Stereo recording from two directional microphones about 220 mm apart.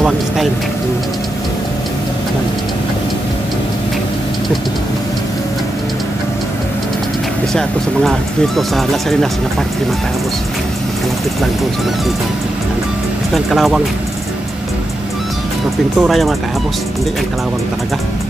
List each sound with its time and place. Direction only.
8.5 s speech: centre (ahead or behind)
13.3 s speech: centre (ahead or behind)
16.0 s speech: centre (ahead or behind)